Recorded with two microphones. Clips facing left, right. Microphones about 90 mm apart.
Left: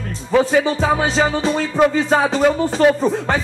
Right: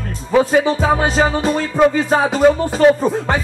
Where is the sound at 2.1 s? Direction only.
5° right (ahead or behind).